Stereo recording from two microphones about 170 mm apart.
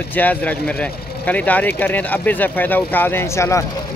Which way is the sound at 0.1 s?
10° left (ahead or behind).